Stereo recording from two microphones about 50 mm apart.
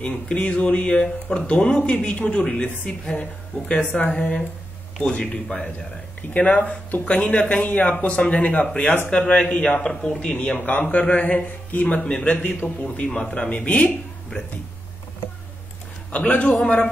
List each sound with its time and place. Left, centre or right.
0.0 s speech: left
1.5 s speech: centre
2.0 s a man's voice: left
12.9 s speech: left
16.1 s speech: left